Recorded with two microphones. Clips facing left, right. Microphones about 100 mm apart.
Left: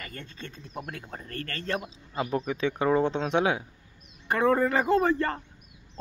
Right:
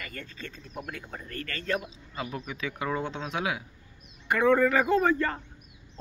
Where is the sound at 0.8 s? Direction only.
40° left (ahead or behind).